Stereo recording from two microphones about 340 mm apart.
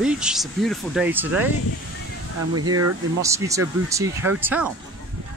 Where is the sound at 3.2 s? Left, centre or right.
Centre.